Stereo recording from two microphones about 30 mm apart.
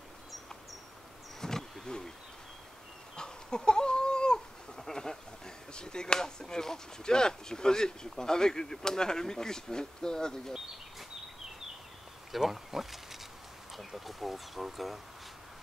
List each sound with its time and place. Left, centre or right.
1.4 s a sound: centre
3.2 s goat: left
5.7 s chop: left
6.1 s speech: left
12.3 s insect: centre
13.7 s speech: centre